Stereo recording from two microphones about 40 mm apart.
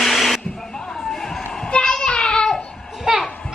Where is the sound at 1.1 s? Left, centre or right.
Centre.